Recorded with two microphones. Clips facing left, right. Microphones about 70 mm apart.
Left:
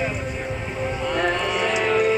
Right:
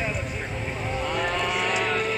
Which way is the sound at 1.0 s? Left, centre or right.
Centre.